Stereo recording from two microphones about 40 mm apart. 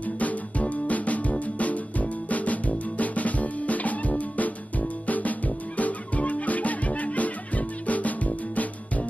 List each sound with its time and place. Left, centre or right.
0.0 s music: left